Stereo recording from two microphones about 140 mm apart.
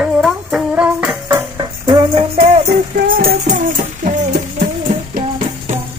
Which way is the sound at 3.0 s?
80° right.